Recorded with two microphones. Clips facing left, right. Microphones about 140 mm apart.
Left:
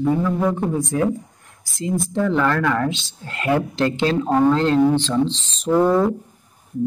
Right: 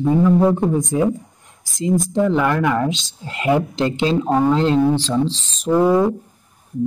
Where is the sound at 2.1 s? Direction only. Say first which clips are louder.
Even; 15° right (ahead or behind).